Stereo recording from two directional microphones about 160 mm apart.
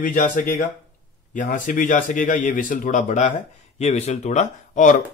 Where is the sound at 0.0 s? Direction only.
55° left (ahead or behind).